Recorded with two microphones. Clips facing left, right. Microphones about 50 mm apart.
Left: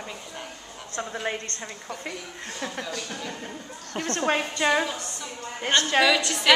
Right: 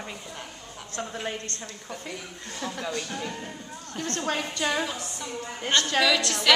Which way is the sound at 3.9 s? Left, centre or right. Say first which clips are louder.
Left 4 dB; left.